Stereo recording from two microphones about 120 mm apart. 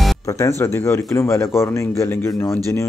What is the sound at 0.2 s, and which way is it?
Speech, 25° left (ahead or behind).